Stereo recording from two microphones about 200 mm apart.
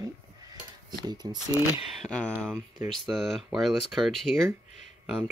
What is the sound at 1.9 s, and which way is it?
Speech, 5° left (ahead or behind).